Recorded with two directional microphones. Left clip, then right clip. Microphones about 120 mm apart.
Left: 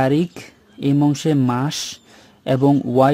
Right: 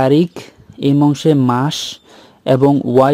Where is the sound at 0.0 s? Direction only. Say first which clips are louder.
Right 6 dB; 35° right (ahead or behind).